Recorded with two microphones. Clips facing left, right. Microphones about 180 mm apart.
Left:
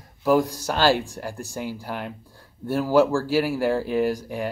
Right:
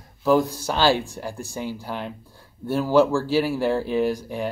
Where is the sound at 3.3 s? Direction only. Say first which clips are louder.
Right 1 dB; 10° left (ahead or behind).